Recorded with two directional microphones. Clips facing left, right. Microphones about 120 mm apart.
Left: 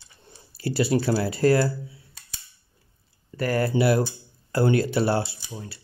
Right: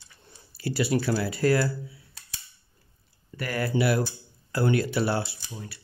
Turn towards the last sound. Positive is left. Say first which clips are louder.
# left 2 dB
turn(degrees=30)  # may be behind; listen again after turning